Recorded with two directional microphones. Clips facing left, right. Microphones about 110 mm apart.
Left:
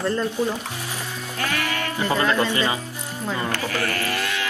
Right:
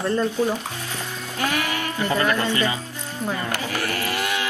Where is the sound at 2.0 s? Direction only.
20° left (ahead or behind).